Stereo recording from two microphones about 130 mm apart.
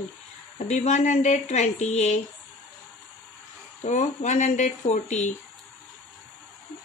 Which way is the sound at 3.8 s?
65° left (ahead or behind).